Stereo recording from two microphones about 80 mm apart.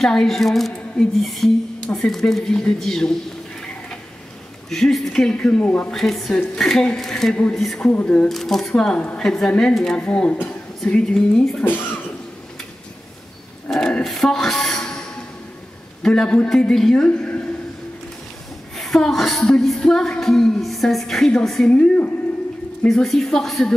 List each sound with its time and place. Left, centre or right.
0.0 s a woman's voice: centre
4.6 s speech: centre
5.9 s a woman's voice: centre
7.3 s speech: centre
8.3 s a woman's voice: centre
11.6 s speech: left
13.7 s a sound: centre
16.0 s a man's voice: centre
18.8 s a woman's voice: centre
21.6 s speech: centre
23.0 s a woman's voice: centre